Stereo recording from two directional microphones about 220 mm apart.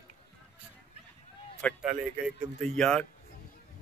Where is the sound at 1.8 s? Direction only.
5° right (ahead or behind).